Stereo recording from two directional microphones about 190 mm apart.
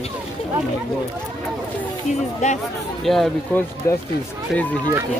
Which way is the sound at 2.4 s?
40° left (ahead or behind).